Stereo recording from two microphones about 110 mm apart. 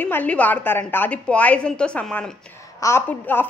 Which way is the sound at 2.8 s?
20° left (ahead or behind).